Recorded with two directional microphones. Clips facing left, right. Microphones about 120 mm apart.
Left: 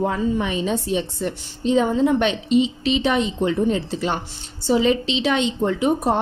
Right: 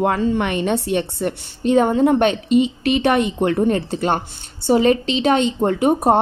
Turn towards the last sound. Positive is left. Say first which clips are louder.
# right 4 dB
turn(degrees=-50)  # may be behind; listen again after turning